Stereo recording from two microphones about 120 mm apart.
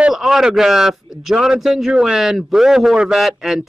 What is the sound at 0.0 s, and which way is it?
Speech, 5° right (ahead or behind).